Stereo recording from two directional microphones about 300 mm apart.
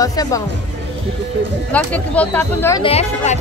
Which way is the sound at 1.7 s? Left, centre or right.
Centre.